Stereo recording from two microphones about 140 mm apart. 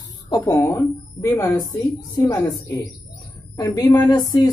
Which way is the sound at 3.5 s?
30° left (ahead or behind).